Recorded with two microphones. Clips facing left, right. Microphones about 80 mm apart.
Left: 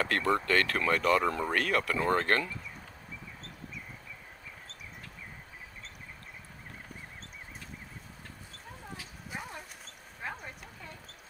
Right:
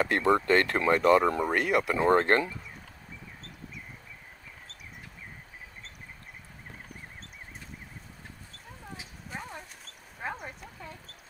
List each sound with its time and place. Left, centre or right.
0.0 s speech: right
9.3 s horse: centre
10.2 s a sound: right